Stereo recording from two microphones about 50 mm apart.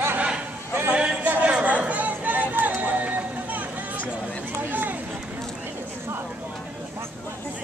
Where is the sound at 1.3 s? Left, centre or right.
Right.